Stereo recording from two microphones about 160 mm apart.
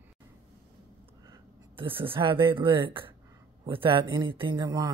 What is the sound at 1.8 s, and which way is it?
Speech, 35° right (ahead or behind).